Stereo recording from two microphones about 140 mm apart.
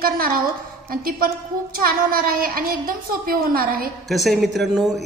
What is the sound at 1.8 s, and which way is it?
A woman's voice, 90° right.